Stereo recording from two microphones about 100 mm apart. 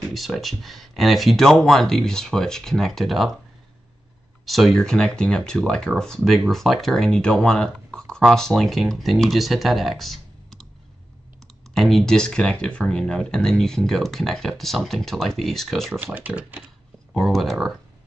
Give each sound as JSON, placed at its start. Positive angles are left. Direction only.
{"t": 0.1, "sound": "speech", "side_deg": 0}
{"t": 4.5, "sound": "speech", "side_deg": 0}
{"t": 11.7, "sound": "speech", "side_deg": 0}
{"t": 15.9, "sound": "speech", "side_deg": -15}
{"t": 17.1, "sound": "speech", "side_deg": 0}